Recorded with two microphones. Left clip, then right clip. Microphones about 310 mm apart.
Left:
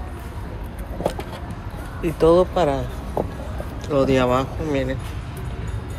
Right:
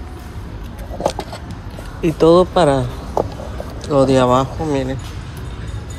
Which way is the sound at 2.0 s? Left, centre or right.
Right.